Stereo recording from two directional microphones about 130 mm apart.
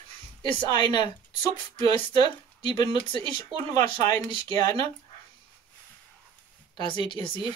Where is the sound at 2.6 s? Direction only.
35° left (ahead or behind).